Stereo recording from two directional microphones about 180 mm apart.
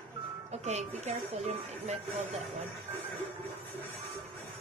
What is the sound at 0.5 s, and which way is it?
Speech, 35° right (ahead or behind).